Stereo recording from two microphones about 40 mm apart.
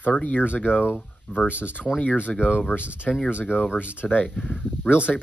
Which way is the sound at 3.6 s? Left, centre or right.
Left.